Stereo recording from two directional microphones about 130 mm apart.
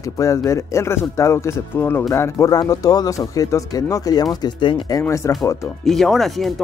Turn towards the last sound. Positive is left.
turn(degrees=0)  # may be behind; listen again after turning